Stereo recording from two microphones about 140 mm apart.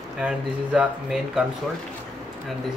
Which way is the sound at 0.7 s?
5° right (ahead or behind).